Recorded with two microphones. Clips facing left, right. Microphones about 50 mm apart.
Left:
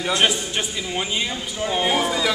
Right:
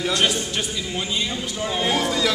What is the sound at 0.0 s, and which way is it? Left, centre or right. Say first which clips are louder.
A man's voice: left 1 dB; centre.